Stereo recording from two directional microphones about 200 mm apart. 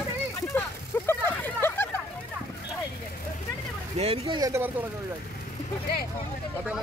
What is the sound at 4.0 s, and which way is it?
Speech, 30° right (ahead or behind).